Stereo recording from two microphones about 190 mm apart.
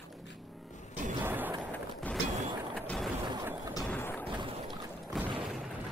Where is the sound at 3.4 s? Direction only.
20° right (ahead or behind).